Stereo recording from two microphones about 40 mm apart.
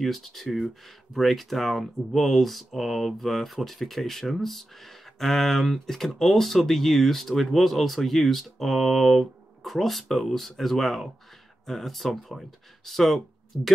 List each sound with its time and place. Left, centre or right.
0.0 s speech: centre